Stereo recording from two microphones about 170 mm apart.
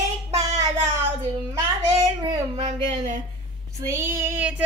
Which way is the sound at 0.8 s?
15° right (ahead or behind).